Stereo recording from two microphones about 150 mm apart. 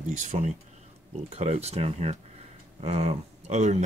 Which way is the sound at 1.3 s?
45° right (ahead or behind).